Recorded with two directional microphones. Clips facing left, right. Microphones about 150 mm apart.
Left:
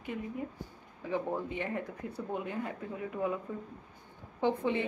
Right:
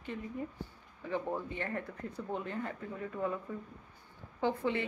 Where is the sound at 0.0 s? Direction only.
10° left (ahead or behind).